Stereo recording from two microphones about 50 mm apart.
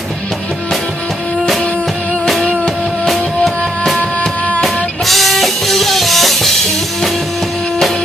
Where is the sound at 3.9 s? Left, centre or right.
Left.